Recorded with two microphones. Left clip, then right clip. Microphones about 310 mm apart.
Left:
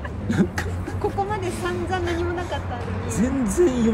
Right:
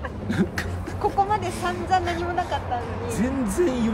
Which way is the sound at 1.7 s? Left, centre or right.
Centre.